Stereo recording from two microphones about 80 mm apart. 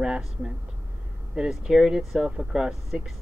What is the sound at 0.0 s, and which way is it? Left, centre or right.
Speech, centre.